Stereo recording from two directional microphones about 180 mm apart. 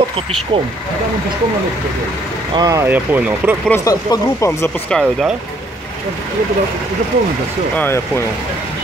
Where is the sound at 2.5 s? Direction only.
20° right (ahead or behind).